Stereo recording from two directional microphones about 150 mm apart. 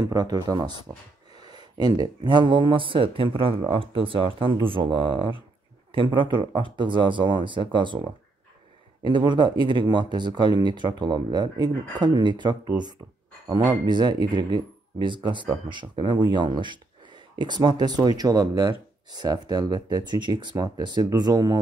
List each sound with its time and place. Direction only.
0.0 s speech: 25° right (ahead or behind)